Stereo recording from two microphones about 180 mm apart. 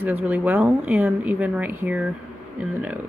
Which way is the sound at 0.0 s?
10° right (ahead or behind).